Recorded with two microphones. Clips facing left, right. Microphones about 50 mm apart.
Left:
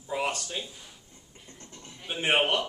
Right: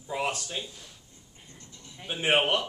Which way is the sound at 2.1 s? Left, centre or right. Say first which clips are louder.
Right 1 dB; centre.